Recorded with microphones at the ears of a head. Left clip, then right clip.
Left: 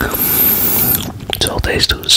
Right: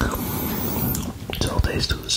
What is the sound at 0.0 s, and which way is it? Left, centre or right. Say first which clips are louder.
Whispering: left 7 dB; left.